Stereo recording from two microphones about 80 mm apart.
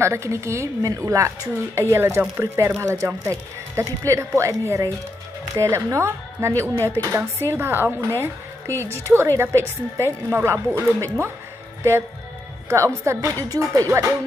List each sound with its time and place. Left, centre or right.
0.0 s a woman's voice: right
12.6 s a woman's voice: right